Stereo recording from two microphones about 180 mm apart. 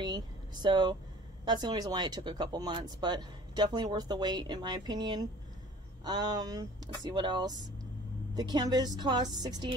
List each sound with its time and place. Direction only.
0.0 s speech: 25° right (ahead or behind)